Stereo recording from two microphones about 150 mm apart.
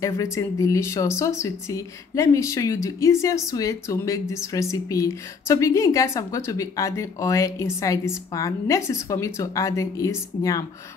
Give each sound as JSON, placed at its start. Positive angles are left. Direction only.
{"t": 0.0, "sound": "speech", "side_deg": 20}